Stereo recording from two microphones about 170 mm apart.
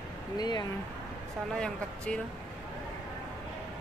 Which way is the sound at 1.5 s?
5° left (ahead or behind).